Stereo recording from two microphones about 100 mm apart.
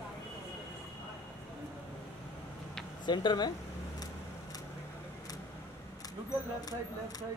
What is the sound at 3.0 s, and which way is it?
Speech, 45° left (ahead or behind).